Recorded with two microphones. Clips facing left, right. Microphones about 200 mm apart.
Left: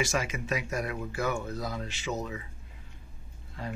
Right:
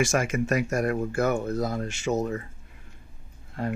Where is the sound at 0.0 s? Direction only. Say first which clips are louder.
Right 6 dB; 50° right (ahead or behind).